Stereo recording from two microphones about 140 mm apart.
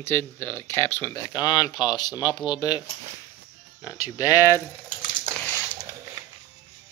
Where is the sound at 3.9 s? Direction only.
25° left (ahead or behind).